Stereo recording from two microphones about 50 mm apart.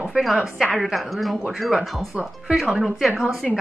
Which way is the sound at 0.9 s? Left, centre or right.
Centre.